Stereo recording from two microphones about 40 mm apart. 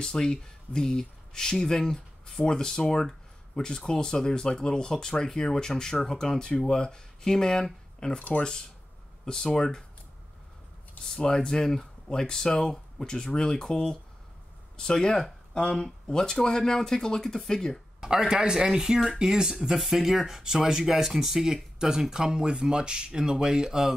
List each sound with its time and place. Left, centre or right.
0.0 s speech: centre
8.2 s speech: left
9.2 s speech: centre
11.1 s speech: centre
18.0 s speech: centre